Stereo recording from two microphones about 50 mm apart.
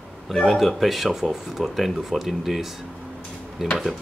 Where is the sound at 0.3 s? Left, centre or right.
Centre.